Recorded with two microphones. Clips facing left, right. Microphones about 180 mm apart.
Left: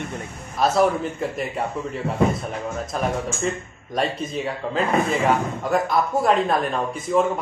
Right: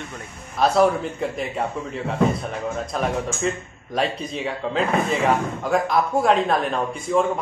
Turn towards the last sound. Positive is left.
turn(degrees=0)  # may be behind; listen again after turning